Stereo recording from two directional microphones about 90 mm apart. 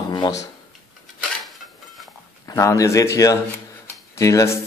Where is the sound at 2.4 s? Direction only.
35° left (ahead or behind).